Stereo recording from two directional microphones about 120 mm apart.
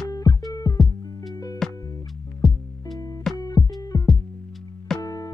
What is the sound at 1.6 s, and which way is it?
Music, 5° left (ahead or behind).